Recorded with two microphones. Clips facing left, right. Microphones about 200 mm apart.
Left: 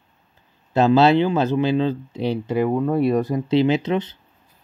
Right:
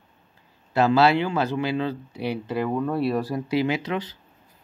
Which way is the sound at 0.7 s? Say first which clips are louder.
Left 4 dB; 25° left (ahead or behind).